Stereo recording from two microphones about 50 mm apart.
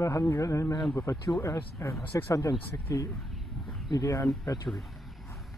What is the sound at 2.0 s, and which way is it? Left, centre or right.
Speech, left.